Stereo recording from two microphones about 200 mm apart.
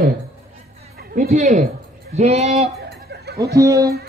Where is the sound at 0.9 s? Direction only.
50° right (ahead or behind).